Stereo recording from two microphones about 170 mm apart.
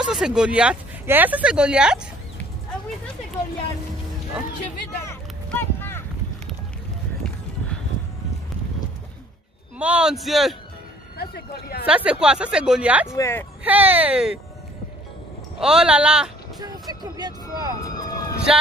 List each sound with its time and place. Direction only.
0.0 s speech: 5° right (ahead or behind)
5.0 s a sound: 10° left (ahead or behind)
9.8 s speech: 5° right (ahead or behind)
11.1 s speech: 70° left (ahead or behind)
11.8 s speech: 5° right (ahead or behind)
13.1 s speech: 15° left (ahead or behind)
13.7 s speech: 10° right (ahead or behind)
15.6 s speech: 5° right (ahead or behind)
16.5 s speech: 25° right (ahead or behind)
17.8 s speech: 20° left (ahead or behind)